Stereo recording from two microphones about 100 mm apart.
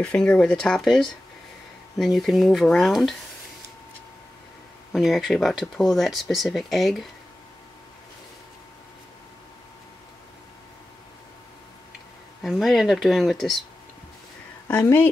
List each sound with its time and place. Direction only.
0.0 s speech: 10° left (ahead or behind)
4.9 s speech: centre (ahead or behind)
12.4 s speech: centre (ahead or behind)
14.8 s speech: 25° left (ahead or behind)